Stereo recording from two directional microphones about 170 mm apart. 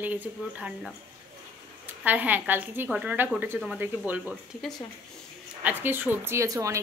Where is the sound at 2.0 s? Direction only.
10° right (ahead or behind).